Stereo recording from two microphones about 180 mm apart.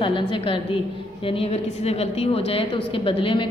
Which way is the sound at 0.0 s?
30° left (ahead or behind).